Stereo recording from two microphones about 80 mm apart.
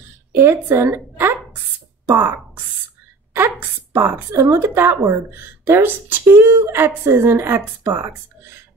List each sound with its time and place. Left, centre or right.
0.3 s a woman's voice: right